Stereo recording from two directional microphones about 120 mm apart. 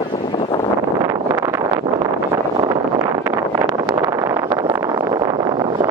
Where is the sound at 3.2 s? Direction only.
25° right (ahead or behind).